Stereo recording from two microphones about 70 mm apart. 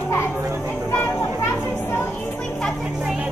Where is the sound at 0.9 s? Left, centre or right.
Left.